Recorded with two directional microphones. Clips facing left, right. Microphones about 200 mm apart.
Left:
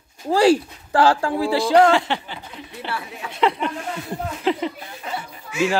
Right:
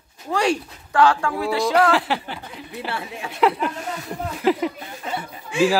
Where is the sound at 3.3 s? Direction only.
5° right (ahead or behind).